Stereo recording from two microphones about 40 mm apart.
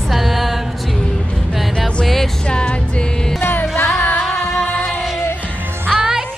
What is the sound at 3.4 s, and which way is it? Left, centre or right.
Music, left.